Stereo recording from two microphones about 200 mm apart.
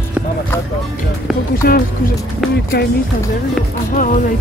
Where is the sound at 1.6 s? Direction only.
50° left (ahead or behind).